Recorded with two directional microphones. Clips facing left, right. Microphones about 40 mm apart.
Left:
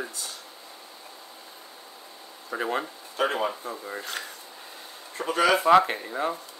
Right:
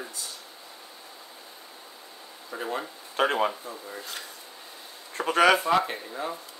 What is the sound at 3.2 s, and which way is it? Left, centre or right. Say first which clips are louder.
Speech: right 1 dB; right.